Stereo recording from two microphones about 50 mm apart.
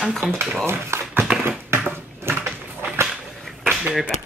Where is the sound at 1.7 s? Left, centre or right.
Right.